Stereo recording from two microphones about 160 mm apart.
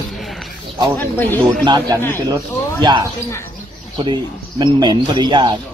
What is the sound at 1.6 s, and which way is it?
Speech, 25° right (ahead or behind).